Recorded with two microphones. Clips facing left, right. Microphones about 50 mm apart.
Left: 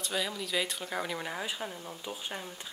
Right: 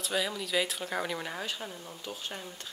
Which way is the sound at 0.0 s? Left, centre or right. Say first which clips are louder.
Right 2 dB; centre.